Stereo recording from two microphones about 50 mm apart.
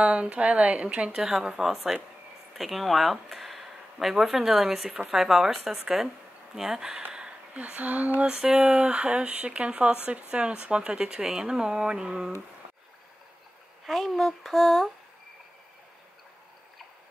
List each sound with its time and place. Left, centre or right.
0.0 s speech: right
1.2 s speech: centre
7.0 s a sound: centre
7.5 s speech: right
8.3 s speech: centre
13.8 s speech: centre